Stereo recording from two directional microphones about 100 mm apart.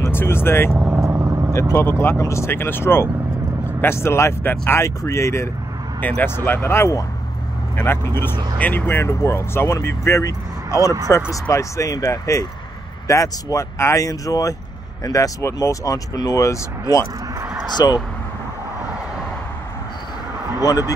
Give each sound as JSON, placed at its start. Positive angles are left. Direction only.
{"t": 0.0, "sound": "speech", "side_deg": 25}
{"t": 0.7, "sound": "vehicle", "side_deg": -25}
{"t": 1.5, "sound": "speech", "side_deg": 30}
{"t": 5.9, "sound": "speech", "side_deg": 15}
{"t": 17.8, "sound": "speech", "side_deg": 40}
{"t": 20.5, "sound": "speech", "side_deg": 40}